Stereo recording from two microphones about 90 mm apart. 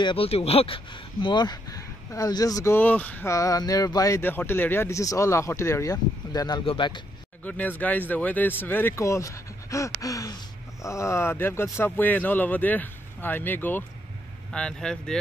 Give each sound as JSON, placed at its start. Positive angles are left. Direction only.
{"t": 0.0, "sound": "speech", "side_deg": 80}
{"t": 2.7, "sound": "speech", "side_deg": 20}
{"t": 3.3, "sound": "speech", "side_deg": 35}
{"t": 4.2, "sound": "speech", "side_deg": 20}
{"t": 6.6, "sound": "speech", "side_deg": 75}
{"t": 7.4, "sound": "speech", "side_deg": 20}
{"t": 8.9, "sound": "speech", "side_deg": 35}
{"t": 14.5, "sound": "speech", "side_deg": 10}